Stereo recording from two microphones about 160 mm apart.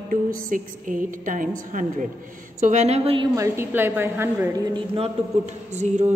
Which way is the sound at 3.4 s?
15° right (ahead or behind).